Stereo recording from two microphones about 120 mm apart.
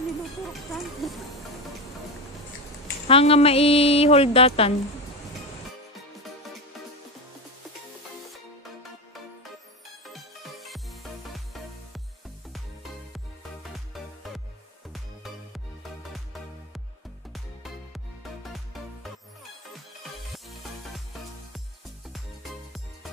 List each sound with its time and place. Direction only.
0.5 s speech: centre (ahead or behind)
3.1 s a woman's voice: 55° left (ahead or behind)
10.0 s music: centre (ahead or behind)
13.1 s music: centre (ahead or behind)
17.3 s music: centre (ahead or behind)
22.1 s music: centre (ahead or behind)